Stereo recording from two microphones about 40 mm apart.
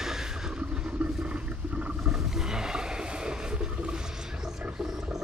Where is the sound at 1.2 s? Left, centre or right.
Right.